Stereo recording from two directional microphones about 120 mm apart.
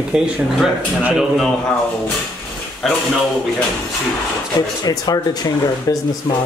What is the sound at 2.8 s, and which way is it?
Speech, centre (ahead or behind).